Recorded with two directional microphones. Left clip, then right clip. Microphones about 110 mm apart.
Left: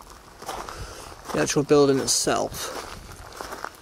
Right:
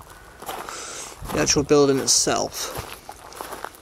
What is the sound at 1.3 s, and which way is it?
Speech, centre (ahead or behind).